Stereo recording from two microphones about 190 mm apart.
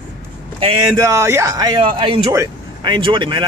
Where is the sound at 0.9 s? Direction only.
15° right (ahead or behind).